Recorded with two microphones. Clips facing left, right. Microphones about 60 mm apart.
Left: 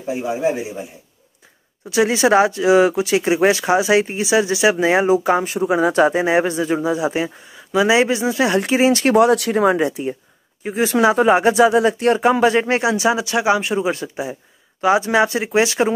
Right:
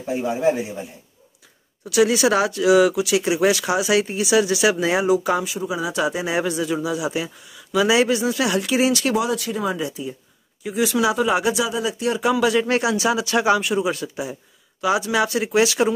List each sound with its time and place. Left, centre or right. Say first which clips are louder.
0.1 s a man's voice: even; centre
1.9 s speech: left 2 dB; left
5.5 s speech: left 8 dB; left
9.1 s speech: left 8 dB; left
10.6 s speech: left 4 dB; left
11.7 s speech: left 8 dB; left